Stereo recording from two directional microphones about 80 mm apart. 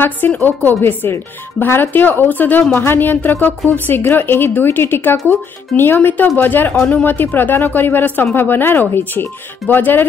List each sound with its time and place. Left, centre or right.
0.0 s speech: left